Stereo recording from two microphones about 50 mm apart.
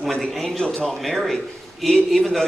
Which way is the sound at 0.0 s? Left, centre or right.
Centre.